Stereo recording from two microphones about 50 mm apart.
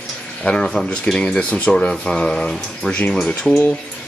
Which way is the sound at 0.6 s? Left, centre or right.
Centre.